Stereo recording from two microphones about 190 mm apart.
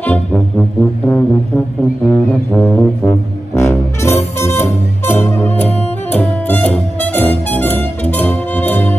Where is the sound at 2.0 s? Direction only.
5° left (ahead or behind).